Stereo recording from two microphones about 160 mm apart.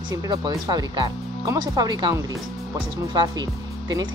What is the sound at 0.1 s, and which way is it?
Speech, 25° right (ahead or behind).